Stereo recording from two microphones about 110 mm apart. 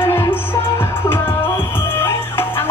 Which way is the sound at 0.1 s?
20° left (ahead or behind).